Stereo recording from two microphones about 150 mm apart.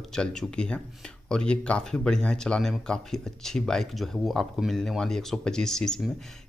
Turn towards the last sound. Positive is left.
turn(degrees=5)  # may be behind; listen again after turning